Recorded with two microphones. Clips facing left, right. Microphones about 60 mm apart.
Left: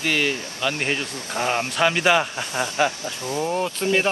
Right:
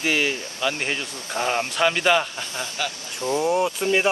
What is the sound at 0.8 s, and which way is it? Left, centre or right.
Speech, centre.